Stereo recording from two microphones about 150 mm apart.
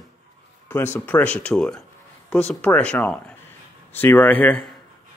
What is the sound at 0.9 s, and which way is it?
Speech, 10° left (ahead or behind).